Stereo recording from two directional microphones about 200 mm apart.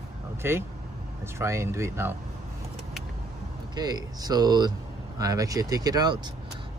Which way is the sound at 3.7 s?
20° right (ahead or behind).